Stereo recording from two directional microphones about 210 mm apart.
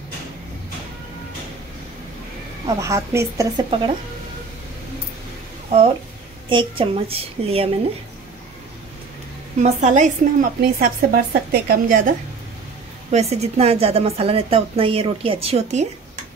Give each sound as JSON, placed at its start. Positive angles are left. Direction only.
{"t": 2.6, "sound": "a woman's voice", "side_deg": -15}
{"t": 5.7, "sound": "a woman's voice", "side_deg": -30}
{"t": 9.6, "sound": "a woman's voice", "side_deg": -35}
{"t": 13.1, "sound": "a woman's voice", "side_deg": -30}